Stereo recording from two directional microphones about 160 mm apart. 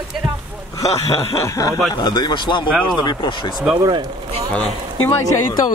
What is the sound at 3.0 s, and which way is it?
Speech, 30° left (ahead or behind).